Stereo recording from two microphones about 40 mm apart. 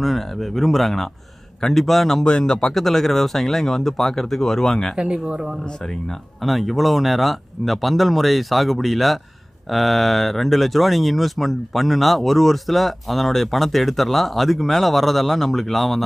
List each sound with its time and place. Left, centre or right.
0.0 s speech: centre
2.2 s speech: centre
2.5 s speech: centre
4.9 s speech: right
6.4 s speech: centre